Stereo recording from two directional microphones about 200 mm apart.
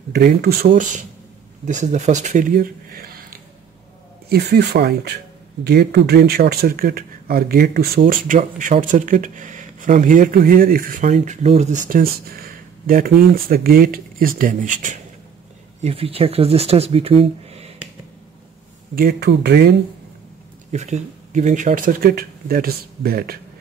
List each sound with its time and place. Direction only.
0.1 s speech: 50° right (ahead or behind)
1.7 s speech: 35° right (ahead or behind)
15.8 s speech: 30° right (ahead or behind)
18.9 s speech: 50° right (ahead or behind)
20.7 s speech: 35° right (ahead or behind)